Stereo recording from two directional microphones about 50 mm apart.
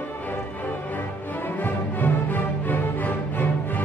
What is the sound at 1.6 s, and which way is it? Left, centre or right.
Music, left.